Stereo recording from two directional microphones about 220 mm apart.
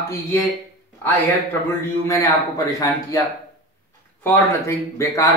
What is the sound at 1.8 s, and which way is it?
A man's voice, 15° left (ahead or behind).